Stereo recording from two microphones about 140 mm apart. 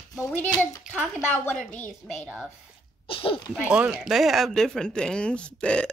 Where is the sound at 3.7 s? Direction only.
5° right (ahead or behind).